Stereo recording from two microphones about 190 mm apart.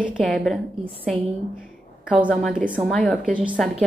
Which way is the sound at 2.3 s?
5° left (ahead or behind).